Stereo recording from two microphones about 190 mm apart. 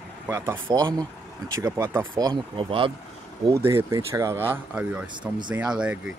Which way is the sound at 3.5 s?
15° right (ahead or behind).